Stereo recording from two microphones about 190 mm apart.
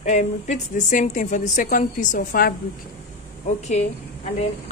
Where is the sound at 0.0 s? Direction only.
40° left (ahead or behind).